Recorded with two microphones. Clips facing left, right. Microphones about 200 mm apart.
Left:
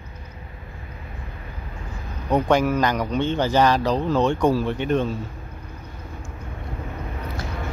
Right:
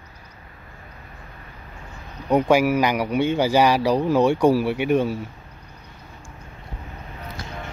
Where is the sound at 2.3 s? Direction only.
10° right (ahead or behind).